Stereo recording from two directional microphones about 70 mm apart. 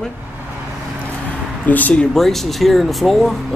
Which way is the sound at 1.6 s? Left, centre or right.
Left.